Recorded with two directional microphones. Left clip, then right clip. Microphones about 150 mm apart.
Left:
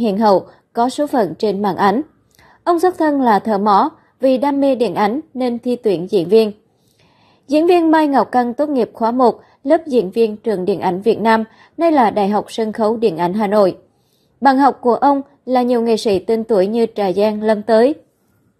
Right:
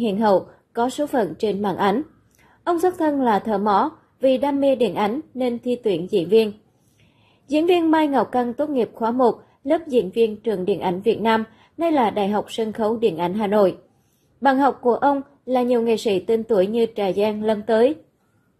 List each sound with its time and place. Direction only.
0.0 s a woman's voice: 40° left (ahead or behind)